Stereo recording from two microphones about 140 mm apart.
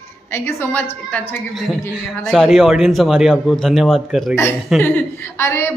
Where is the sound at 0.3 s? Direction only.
15° left (ahead or behind).